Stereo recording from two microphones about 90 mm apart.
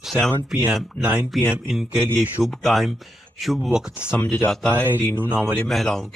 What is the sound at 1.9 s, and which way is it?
Speech, 25° right (ahead or behind).